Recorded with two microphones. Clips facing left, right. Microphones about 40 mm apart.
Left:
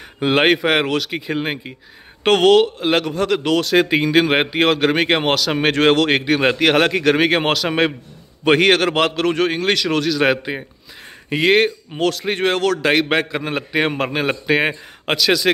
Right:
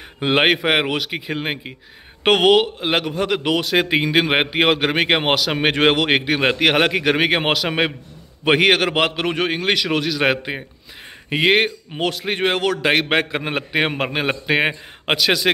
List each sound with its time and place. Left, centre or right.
0.2 s a man's voice: centre
13.1 s a man's voice: right